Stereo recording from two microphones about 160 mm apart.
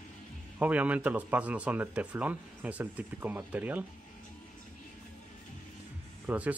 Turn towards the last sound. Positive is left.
turn(degrees=-10)  # may be behind; listen again after turning